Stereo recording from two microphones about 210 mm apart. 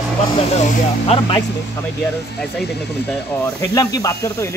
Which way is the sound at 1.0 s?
30° left (ahead or behind).